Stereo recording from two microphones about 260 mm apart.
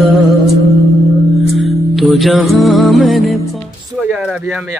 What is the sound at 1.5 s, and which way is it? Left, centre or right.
Music, centre.